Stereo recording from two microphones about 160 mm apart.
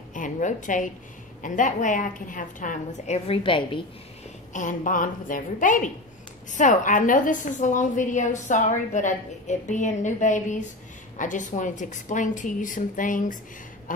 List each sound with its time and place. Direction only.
0.1 s a woman's voice: 50° left (ahead or behind); by 3.8 s 30° left (ahead or behind)
4.5 s a woman's voice: 55° left (ahead or behind)
13.9 s a sound: 55° left (ahead or behind)